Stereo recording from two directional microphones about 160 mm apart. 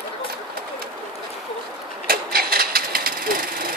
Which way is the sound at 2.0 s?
70° right (ahead or behind).